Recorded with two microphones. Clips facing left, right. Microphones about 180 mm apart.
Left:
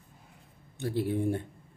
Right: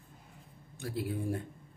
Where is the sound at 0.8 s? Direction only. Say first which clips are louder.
Left 7 dB; 25° left (ahead or behind).